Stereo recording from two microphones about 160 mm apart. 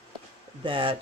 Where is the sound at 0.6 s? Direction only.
35° right (ahead or behind).